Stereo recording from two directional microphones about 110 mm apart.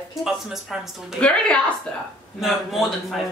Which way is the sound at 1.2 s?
10° left (ahead or behind).